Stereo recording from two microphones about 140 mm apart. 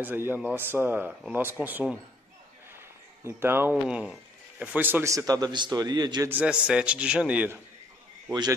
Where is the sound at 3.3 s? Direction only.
15° right (ahead or behind).